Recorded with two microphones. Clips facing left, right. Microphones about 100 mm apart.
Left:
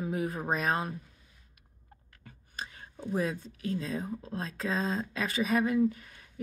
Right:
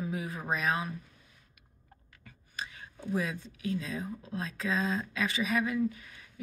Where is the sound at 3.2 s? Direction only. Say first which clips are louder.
Left 5 dB; 40° left (ahead or behind).